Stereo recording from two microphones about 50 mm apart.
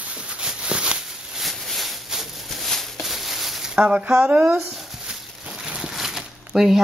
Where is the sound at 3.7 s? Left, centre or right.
Right.